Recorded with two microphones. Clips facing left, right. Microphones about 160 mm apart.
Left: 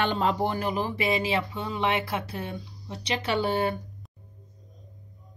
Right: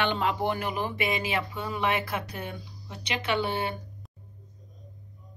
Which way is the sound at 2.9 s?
35° left (ahead or behind).